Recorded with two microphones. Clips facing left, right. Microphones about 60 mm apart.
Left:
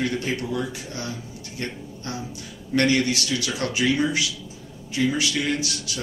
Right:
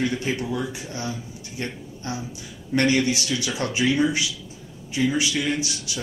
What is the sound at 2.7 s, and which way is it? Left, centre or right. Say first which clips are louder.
Speech: even; right.